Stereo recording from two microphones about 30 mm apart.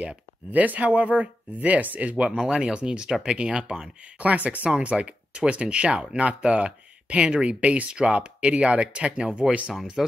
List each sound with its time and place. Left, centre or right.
0.5 s speech: right
2.3 s speech: centre
2.6 s speech: right
3.1 s speech: centre
3.3 s speech: right
4.2 s speech: right
4.6 s speech: right
7.6 s speech: right
7.9 s speech: right
10.0 s speech: centre